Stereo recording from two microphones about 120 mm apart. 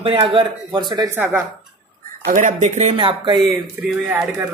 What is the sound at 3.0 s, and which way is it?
Speech, 40° right (ahead or behind).